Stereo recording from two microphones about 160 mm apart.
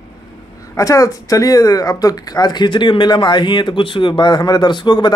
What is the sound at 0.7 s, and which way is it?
Speech, 20° left (ahead or behind).